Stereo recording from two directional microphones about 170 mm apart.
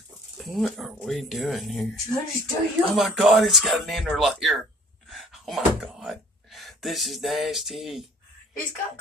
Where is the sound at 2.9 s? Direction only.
Centre (ahead or behind).